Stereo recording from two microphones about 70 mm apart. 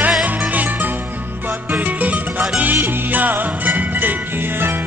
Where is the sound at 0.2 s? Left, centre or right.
Right.